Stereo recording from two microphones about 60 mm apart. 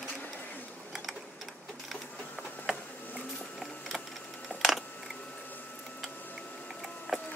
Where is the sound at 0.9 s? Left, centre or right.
Centre.